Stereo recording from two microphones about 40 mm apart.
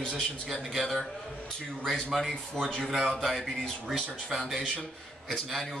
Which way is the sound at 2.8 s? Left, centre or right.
Centre.